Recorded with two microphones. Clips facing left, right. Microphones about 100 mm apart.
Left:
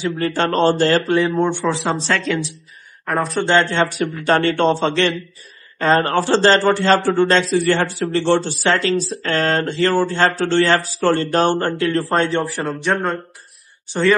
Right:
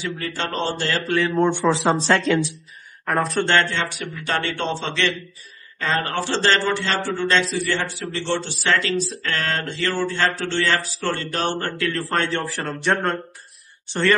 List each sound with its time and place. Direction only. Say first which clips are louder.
0.2 s speech: left 11 dB; 50° left (ahead or behind)
1.5 s speech: right 1 dB; 20° right (ahead or behind)
3.1 s speech: left 1 dB; centre (ahead or behind)
3.5 s speech: left 7 dB; 30° left (ahead or behind)
4.0 s a man's voice: left 8 dB; 45° left (ahead or behind); by 12.4 s 25° left (ahead or behind)
12.5 s speech: left 2 dB; centre (ahead or behind)